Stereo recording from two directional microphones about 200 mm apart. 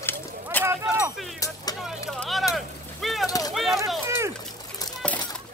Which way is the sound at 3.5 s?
Centre (ahead or behind).